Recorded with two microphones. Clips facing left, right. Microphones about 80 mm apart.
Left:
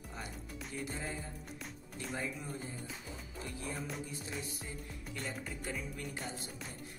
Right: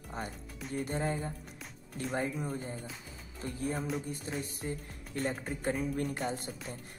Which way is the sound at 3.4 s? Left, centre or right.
Right.